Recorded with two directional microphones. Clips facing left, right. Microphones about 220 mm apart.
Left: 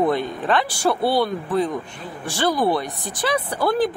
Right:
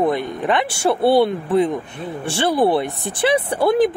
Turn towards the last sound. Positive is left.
turn(degrees=-20)  # may be behind; listen again after turning